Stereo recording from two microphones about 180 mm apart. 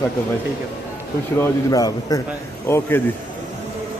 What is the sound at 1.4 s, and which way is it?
A man's voice, 20° left (ahead or behind).